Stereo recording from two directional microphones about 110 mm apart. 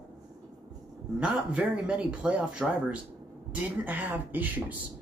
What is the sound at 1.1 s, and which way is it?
Speech, 10° right (ahead or behind).